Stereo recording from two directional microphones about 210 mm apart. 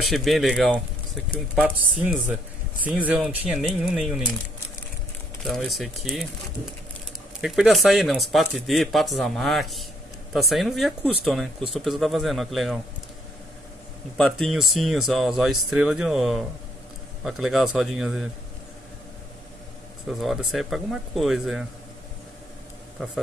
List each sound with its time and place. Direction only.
0.0 s speech: centre (ahead or behind)
5.4 s speech: centre (ahead or behind)
7.4 s speech: centre (ahead or behind)
14.1 s speech: centre (ahead or behind)
20.1 s speech: centre (ahead or behind)